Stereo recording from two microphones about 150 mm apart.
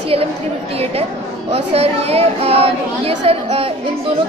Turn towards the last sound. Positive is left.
turn(degrees=-40)  # may be behind; listen again after turning